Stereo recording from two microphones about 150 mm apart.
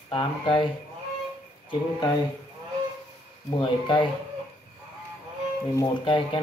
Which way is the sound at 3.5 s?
30° left (ahead or behind).